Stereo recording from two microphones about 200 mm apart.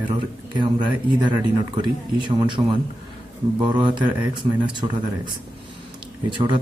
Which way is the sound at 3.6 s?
25° right (ahead or behind).